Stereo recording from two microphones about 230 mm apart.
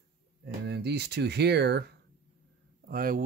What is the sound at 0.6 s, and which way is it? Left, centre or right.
Speech, right.